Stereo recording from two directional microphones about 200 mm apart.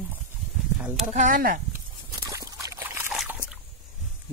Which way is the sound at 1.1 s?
40° right (ahead or behind).